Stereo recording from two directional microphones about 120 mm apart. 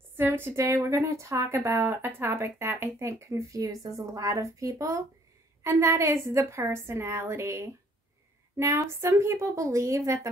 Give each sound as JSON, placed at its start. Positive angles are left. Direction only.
{"t": 0.1, "sound": "a woman's voice", "side_deg": -20}